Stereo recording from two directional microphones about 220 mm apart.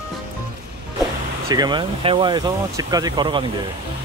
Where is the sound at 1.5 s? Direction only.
20° right (ahead or behind).